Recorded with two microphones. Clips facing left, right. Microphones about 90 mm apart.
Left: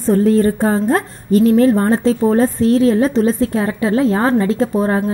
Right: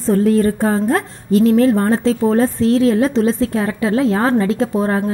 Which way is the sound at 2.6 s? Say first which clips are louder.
Left 1 dB; 75° right (ahead or behind).